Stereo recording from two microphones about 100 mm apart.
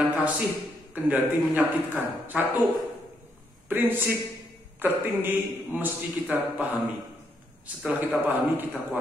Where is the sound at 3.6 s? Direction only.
20° right (ahead or behind).